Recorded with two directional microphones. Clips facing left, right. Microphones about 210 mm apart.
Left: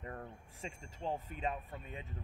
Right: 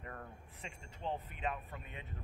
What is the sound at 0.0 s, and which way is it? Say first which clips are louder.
Speech: left 3 dB; 30° left (ahead or behind).